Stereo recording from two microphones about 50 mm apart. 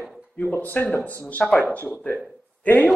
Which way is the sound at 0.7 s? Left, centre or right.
Left.